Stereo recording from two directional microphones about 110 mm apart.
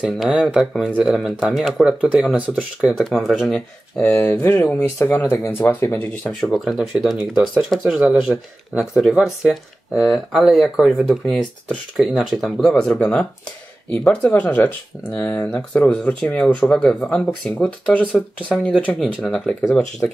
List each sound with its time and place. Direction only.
0.0 s speech: 5° right (ahead or behind)
3.0 s speech: centre (ahead or behind)
6.5 s speech: centre (ahead or behind)